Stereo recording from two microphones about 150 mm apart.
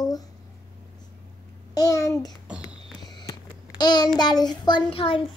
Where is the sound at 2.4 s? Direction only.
5° right (ahead or behind).